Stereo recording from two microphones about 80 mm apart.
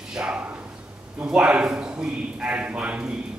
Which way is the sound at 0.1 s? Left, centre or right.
Centre.